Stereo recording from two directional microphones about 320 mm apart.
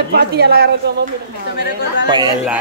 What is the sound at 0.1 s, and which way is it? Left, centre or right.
Speech, right.